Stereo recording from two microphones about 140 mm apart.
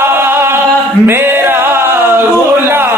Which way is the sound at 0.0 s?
15° right (ahead or behind).